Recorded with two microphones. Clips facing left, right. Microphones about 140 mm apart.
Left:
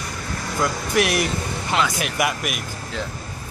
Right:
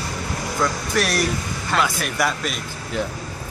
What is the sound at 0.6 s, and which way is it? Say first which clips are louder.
Speech: left 2 dB; 20° left (ahead or behind).